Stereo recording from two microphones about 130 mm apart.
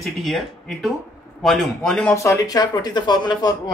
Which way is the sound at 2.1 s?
20° left (ahead or behind).